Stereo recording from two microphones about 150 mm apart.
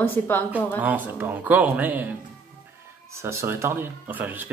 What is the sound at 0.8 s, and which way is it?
Speech, 10° right (ahead or behind).